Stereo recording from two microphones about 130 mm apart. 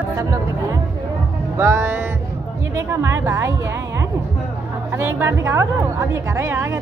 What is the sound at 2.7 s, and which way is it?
A woman's voice, 20° right (ahead or behind).